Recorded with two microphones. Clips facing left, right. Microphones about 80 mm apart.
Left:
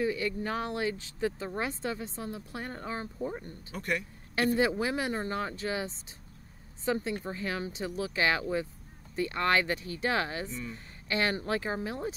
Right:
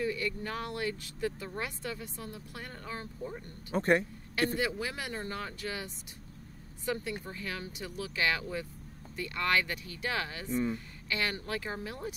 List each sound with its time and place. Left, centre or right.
0.0 s speech: left
3.7 s speech: right
4.6 s speech: left
10.5 s speech: right
11.1 s speech: left